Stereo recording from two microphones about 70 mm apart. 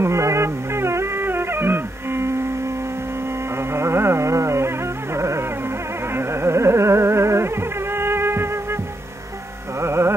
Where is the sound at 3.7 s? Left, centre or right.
Right.